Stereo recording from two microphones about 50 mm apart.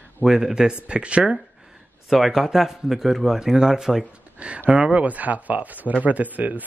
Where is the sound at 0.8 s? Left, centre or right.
Right.